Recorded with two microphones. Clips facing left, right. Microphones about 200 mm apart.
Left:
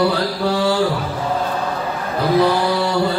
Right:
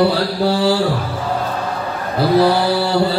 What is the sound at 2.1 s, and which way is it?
Mantra, 30° right (ahead or behind).